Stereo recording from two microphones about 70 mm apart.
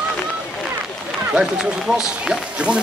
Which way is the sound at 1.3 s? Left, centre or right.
Centre.